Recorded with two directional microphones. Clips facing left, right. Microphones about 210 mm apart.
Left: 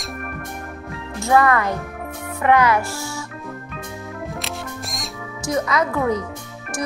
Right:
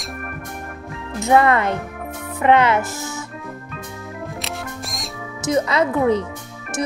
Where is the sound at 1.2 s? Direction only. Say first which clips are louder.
Right 2 dB; 25° right (ahead or behind).